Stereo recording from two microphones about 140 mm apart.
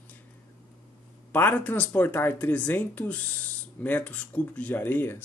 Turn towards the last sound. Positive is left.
turn(degrees=15)  # may be behind; listen again after turning